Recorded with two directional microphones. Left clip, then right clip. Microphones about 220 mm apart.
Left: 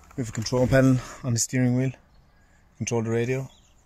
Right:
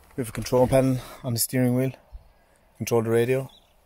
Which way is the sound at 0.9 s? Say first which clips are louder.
Left 4 dB; 10° left (ahead or behind).